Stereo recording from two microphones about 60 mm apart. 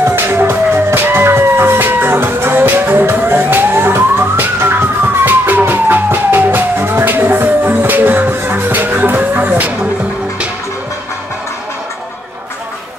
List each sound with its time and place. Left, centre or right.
0.0 s music: right